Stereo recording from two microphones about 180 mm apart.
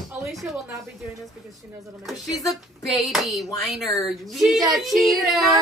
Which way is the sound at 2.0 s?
Centre (ahead or behind).